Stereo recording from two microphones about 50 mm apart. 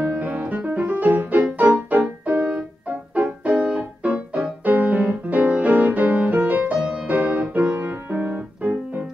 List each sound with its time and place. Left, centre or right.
0.2 s music: right